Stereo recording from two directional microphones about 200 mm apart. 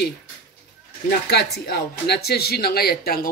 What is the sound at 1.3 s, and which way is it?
Speech, 55° left (ahead or behind).